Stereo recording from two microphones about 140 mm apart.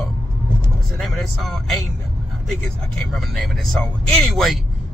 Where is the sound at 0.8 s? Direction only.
Centre (ahead or behind).